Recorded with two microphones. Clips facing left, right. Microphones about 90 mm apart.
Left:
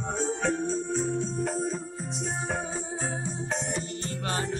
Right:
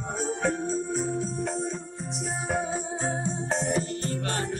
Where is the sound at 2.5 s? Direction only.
10° right (ahead or behind).